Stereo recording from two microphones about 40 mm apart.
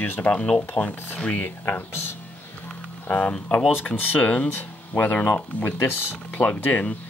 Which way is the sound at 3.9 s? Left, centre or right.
Left.